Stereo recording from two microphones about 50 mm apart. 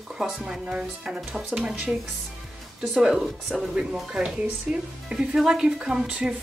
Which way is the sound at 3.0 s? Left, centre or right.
Centre.